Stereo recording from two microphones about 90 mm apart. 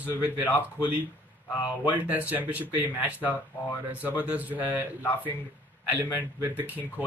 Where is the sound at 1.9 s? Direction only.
15° right (ahead or behind).